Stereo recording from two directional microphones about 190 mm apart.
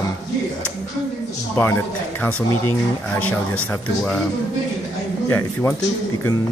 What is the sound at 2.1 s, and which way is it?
Speech, 10° left (ahead or behind).